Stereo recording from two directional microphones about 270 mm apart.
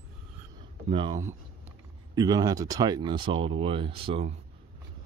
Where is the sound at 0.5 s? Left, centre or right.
Centre.